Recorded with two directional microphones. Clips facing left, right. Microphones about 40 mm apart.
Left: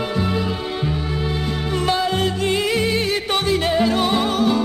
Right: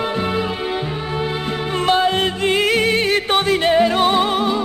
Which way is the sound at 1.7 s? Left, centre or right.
Right.